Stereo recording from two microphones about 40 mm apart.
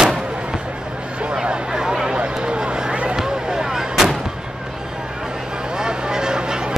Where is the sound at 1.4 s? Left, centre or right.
Centre.